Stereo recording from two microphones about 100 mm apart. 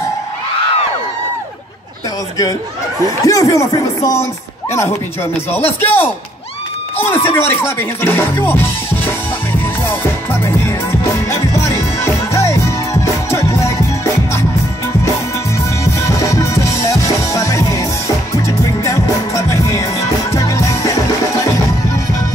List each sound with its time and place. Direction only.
3.3 s a man's voice: 30° left (ahead or behind)
9.8 s music: 25° left (ahead or behind)
15.8 s music: 30° left (ahead or behind)